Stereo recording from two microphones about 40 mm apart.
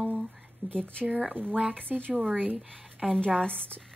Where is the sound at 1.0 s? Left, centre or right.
Right.